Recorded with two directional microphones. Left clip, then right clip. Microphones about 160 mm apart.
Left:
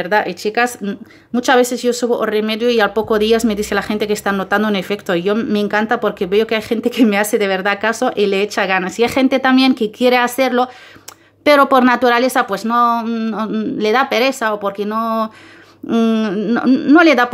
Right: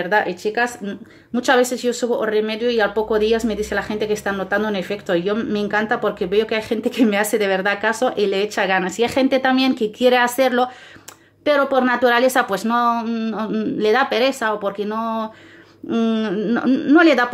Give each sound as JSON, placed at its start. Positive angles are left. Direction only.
{"t": 0.0, "sound": "a woman's voice", "side_deg": 25}
{"t": 11.4, "sound": "a woman's voice", "side_deg": 35}